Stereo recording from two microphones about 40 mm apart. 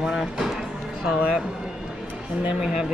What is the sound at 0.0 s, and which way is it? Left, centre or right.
Music, centre.